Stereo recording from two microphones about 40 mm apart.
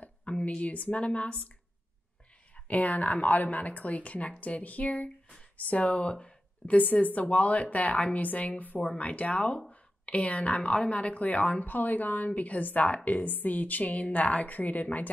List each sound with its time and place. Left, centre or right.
0.0 s speech: left
2.5 s a woman's voice: left